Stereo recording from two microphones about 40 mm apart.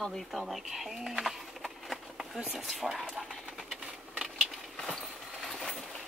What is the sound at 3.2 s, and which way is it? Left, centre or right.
Sewing machine, centre.